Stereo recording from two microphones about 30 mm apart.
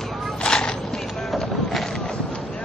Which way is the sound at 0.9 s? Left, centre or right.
Centre.